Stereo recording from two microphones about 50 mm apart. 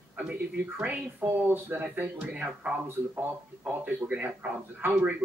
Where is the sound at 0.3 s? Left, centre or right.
Right.